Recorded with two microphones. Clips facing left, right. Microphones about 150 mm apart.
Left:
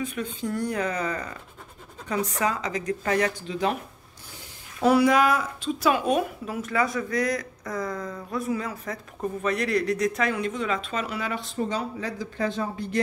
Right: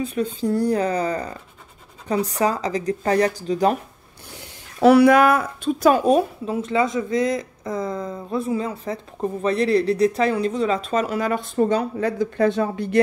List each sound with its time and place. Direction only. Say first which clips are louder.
0.0 s a woman's voice: right 7 dB; 35° right (ahead or behind)
4.7 s a woman's voice: right 6 dB; 70° right (ahead or behind)